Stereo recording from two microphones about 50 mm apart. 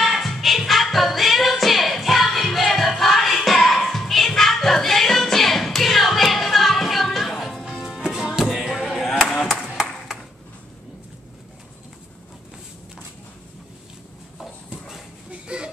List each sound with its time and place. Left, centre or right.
0.0 s music: centre
9.3 s clapping: centre
15.4 s a sound: centre